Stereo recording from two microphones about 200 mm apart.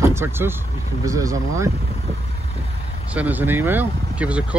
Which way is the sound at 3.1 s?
10° right (ahead or behind).